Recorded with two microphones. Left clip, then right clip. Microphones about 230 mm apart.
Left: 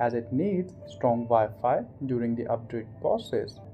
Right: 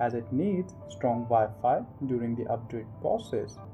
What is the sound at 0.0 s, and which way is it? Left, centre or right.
Speech, centre.